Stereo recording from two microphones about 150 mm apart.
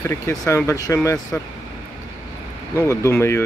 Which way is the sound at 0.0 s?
20° left (ahead or behind).